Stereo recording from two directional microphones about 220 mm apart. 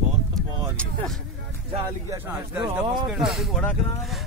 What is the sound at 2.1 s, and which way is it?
Speech, 5° right (ahead or behind).